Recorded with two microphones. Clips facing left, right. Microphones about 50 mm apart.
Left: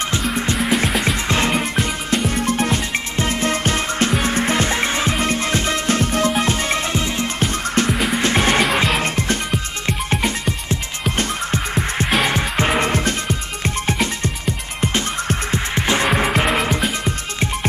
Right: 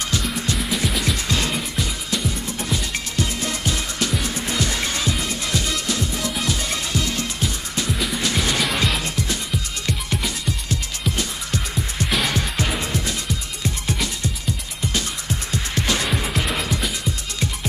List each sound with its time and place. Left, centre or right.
0.3 s music: left
1.6 s music: left
3.2 s music: left
7.3 s music: left
7.9 s music: left
8.2 s music: left
12.7 s music: left
14.9 s music: left